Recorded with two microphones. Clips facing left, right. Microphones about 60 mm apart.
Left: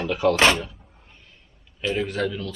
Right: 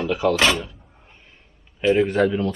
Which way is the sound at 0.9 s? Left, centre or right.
Centre.